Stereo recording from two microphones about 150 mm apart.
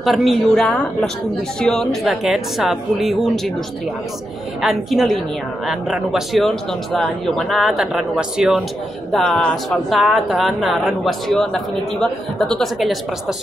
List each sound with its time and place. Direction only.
0.0 s speech: centre (ahead or behind)
4.6 s speech: centre (ahead or behind)